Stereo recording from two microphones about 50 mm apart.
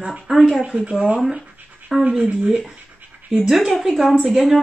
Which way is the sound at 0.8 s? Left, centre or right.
Right.